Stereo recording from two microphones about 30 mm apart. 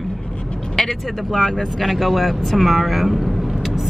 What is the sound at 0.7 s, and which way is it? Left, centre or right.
Speech, centre.